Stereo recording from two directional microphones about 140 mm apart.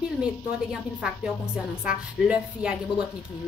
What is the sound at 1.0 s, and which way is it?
A woman's voice, 5° right (ahead or behind).